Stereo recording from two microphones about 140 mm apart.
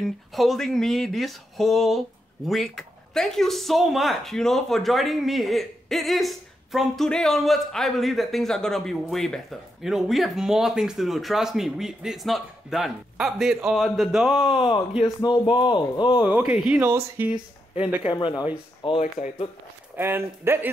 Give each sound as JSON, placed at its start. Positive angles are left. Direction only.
{"t": 0.0, "sound": "speech", "side_deg": 0}
{"t": 14.6, "sound": "speech", "side_deg": 40}
{"t": 16.3, "sound": "speech", "side_deg": -10}
{"t": 18.1, "sound": "speech", "side_deg": 35}
{"t": 20.0, "sound": "speech", "side_deg": -15}